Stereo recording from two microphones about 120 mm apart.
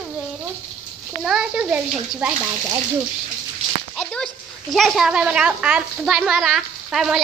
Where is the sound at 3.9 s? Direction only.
5° left (ahead or behind).